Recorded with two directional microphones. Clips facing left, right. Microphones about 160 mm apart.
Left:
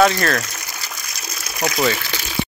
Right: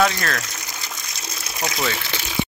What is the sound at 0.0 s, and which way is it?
Speech, 5° left (ahead or behind).